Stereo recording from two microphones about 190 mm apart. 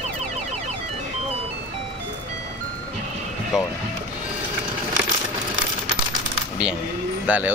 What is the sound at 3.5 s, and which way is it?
Speech, centre (ahead or behind).